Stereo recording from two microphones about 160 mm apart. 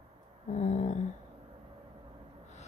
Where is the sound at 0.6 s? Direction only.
45° left (ahead or behind).